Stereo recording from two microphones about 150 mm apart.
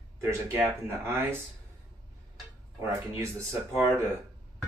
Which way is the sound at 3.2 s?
20° right (ahead or behind).